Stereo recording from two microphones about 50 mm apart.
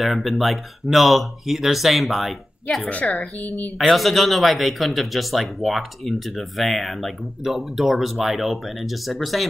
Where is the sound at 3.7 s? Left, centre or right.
Centre.